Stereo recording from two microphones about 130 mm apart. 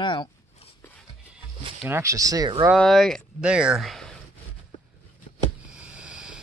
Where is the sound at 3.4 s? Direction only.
5° right (ahead or behind).